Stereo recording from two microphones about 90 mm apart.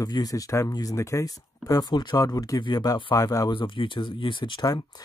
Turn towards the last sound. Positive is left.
turn(degrees=65)  # may be behind; listen again after turning